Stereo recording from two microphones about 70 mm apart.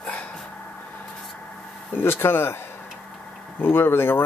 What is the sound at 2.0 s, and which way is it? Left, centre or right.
Speech, left.